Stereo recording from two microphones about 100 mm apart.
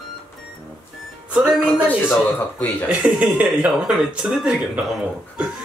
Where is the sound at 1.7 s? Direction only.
20° left (ahead or behind).